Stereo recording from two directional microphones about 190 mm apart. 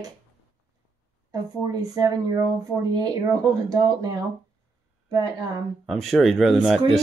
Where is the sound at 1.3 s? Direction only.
20° right (ahead or behind).